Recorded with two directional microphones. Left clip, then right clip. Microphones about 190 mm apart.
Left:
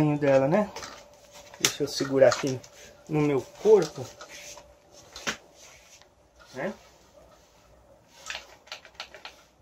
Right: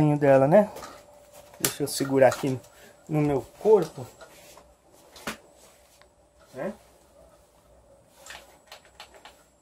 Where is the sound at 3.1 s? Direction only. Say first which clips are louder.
Even; 45° right (ahead or behind).